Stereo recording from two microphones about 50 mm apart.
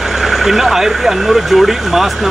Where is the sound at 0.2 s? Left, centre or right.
Centre.